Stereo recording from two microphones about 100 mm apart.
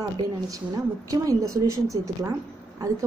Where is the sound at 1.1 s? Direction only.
35° right (ahead or behind).